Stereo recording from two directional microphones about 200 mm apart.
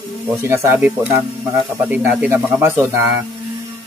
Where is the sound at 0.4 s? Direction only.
15° right (ahead or behind).